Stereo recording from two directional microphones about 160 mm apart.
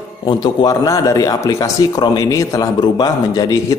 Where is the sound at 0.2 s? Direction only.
30° left (ahead or behind).